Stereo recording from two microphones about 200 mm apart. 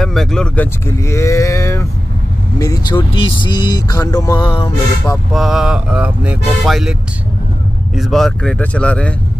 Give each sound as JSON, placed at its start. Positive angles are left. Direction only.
{"t": 0.0, "sound": "speech", "side_deg": 0}
{"t": 1.0, "sound": "a sound", "side_deg": 15}
{"t": 2.6, "sound": "speech", "side_deg": 20}
{"t": 5.3, "sound": "speech", "side_deg": 0}